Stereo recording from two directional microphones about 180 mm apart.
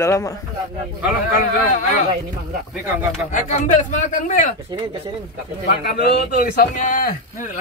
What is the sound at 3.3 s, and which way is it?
A man's voice, 45° left (ahead or behind).